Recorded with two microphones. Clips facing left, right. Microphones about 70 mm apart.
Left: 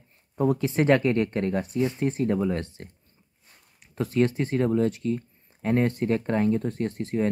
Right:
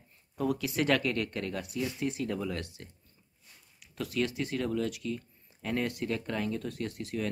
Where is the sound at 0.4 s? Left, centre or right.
Left.